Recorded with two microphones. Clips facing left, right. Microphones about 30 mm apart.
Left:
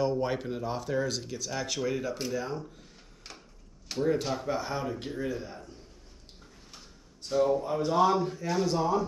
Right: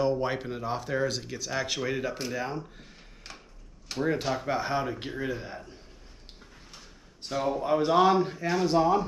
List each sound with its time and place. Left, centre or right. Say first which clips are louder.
0.0 s speech: right 1 dB; centre
3.3 s a sound: right 2 dB; centre
4.0 s speech: even; right
7.2 s speech: left 3 dB; right